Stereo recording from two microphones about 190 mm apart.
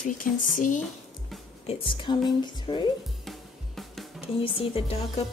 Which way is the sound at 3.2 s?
Centre (ahead or behind).